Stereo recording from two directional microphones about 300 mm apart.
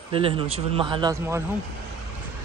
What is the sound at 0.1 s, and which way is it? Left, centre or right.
Speech, centre.